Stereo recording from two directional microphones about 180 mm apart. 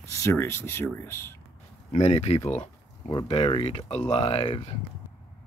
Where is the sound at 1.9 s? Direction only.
35° left (ahead or behind).